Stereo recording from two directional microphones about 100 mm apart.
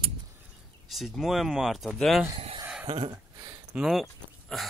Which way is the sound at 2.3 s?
70° right (ahead or behind).